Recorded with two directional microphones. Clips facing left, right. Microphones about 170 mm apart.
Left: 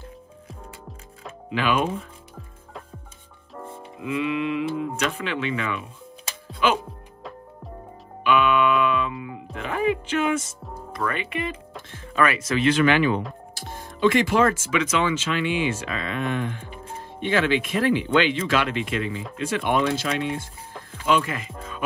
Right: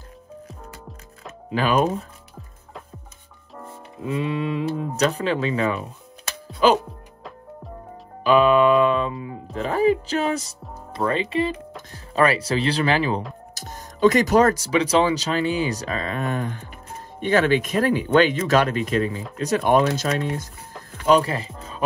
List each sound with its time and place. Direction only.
1.5 s speech: 40° right (ahead or behind)
4.0 s speech: 30° right (ahead or behind)
8.2 s music: 35° right (ahead or behind)
10.9 s speech: 30° right (ahead or behind)
13.6 s speech: 45° right (ahead or behind)
21.2 s speech: 30° right (ahead or behind)